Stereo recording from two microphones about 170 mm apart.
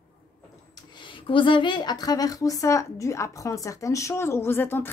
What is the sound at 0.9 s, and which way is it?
A woman's voice, 30° left (ahead or behind).